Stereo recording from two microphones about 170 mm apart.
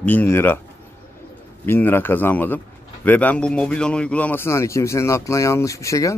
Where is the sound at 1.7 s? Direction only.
10° left (ahead or behind).